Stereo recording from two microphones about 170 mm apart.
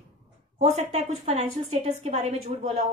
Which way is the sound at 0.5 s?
40° right (ahead or behind).